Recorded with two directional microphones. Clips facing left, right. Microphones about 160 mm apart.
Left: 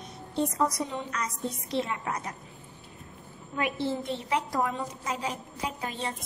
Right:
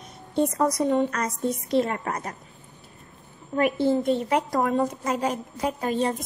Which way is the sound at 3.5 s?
45° right (ahead or behind).